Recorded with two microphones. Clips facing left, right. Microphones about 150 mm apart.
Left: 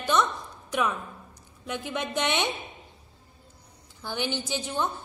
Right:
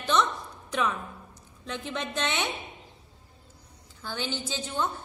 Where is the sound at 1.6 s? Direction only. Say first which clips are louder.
Left 2 dB; 10° left (ahead or behind).